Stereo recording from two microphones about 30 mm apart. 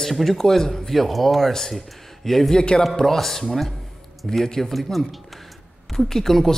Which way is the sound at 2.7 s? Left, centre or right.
Left.